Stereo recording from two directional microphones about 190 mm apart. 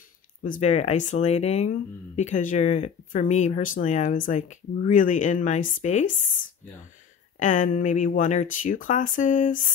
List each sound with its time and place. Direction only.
0.4 s speech: 40° left (ahead or behind)
7.3 s speech: 40° left (ahead or behind)